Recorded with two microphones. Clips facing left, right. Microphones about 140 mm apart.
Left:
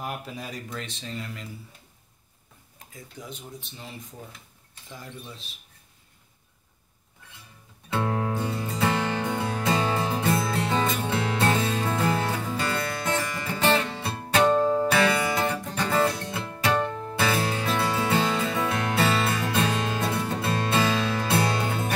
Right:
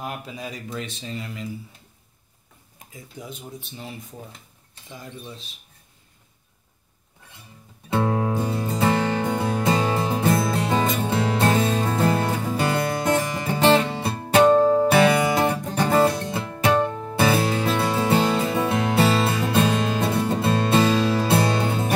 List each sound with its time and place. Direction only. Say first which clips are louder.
0.0 s speech: right 2 dB; centre (ahead or behind)
2.9 s speech: right 3 dB; 10° right (ahead or behind)
4.8 s speech: right 3 dB; 5° right (ahead or behind)
7.9 s music: right 4 dB; 20° right (ahead or behind)
12.5 s music: right 6 dB; 20° right (ahead or behind)
17.6 s music: right 4 dB; 30° right (ahead or behind)
20.0 s music: right 5 dB; 15° right (ahead or behind)